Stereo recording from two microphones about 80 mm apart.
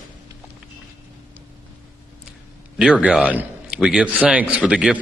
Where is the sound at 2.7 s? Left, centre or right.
Centre.